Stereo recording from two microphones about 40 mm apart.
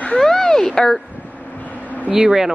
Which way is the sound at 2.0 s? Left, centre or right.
Centre.